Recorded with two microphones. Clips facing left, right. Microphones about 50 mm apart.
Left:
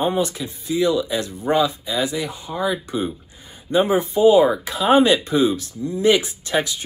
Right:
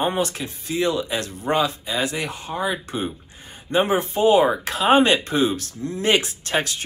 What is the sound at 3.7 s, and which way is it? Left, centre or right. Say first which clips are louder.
Speech: left 2 dB; right.